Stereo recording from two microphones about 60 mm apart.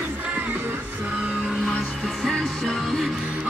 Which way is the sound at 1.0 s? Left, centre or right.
Centre.